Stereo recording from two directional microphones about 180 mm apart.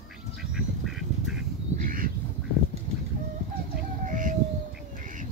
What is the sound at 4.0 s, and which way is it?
Chicken, 45° right (ahead or behind).